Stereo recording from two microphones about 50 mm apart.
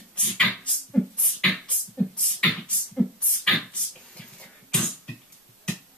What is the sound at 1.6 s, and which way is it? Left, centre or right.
Beatboxing, left.